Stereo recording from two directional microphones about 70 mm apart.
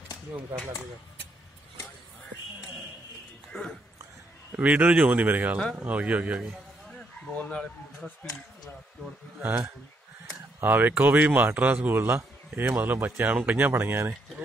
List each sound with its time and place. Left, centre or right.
4.6 s speech: centre
6.9 s a sound: centre
10.6 s speech: right